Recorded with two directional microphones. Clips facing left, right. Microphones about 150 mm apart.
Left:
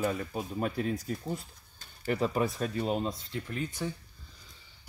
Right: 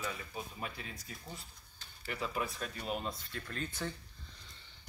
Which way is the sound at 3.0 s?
15° left (ahead or behind).